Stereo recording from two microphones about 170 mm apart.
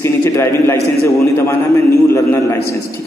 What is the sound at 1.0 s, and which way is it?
A man's voice, 15° left (ahead or behind).